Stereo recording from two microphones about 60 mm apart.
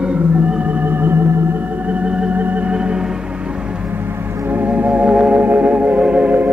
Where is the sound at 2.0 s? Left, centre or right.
Centre.